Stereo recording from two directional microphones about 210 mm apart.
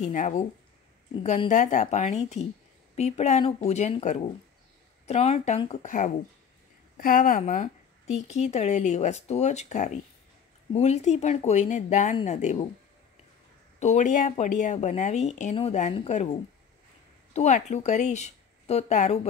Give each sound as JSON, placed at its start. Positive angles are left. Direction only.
{"t": 0.0, "sound": "speech", "side_deg": 35}
{"t": 13.7, "sound": "speech", "side_deg": 35}
{"t": 17.3, "sound": "speech", "side_deg": 35}